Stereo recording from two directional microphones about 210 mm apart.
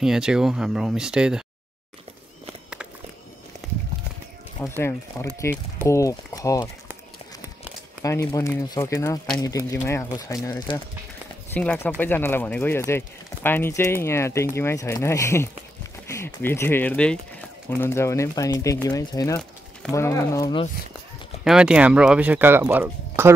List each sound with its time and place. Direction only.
0.0 s speech: 5° right (ahead or behind)
4.6 s speech: 10° left (ahead or behind)
8.0 s speech: 15° left (ahead or behind)
21.5 s speech: 5° right (ahead or behind)